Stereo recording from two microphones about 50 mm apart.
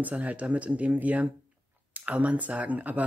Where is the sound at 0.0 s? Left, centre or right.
Right.